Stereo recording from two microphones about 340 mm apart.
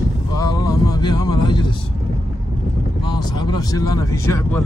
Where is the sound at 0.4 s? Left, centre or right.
Centre.